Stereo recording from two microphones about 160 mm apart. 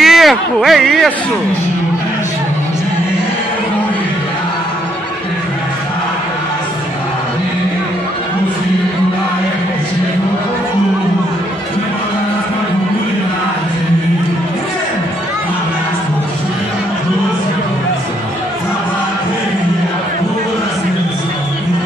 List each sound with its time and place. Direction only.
0.0 s speech: centre (ahead or behind)